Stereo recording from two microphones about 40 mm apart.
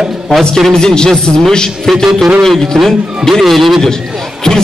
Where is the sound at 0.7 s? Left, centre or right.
Centre.